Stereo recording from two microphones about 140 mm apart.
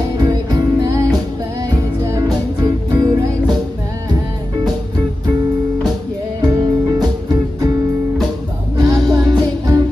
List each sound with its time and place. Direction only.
0.3 s music: 30° right (ahead or behind)
6.4 s music: 25° right (ahead or behind)
8.7 s music: 25° right (ahead or behind)